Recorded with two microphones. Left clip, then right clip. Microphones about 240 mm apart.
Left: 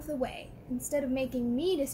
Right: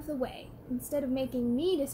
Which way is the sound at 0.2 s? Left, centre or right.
Centre.